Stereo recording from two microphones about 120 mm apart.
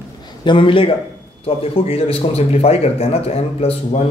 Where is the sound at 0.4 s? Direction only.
45° left (ahead or behind).